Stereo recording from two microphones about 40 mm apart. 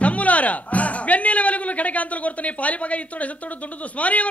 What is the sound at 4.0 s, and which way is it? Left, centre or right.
Speech, left.